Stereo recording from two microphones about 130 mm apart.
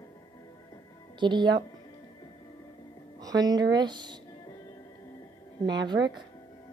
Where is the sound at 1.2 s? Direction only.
35° right (ahead or behind).